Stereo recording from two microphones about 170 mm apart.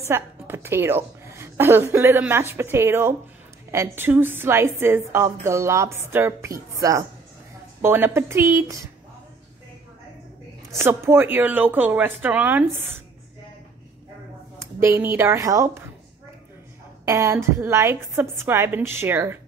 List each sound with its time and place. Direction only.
0.1 s a woman's voice: 15° right (ahead or behind)
10.8 s a woman's voice: 15° right (ahead or behind)
14.6 s a woman's voice: 15° right (ahead or behind)
17.0 s a woman's voice: 15° right (ahead or behind)